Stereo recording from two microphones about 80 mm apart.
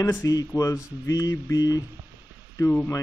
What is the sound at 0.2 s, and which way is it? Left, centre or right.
Speech, left.